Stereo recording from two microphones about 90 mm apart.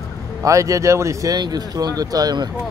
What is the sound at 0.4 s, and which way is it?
Speech, 35° right (ahead or behind).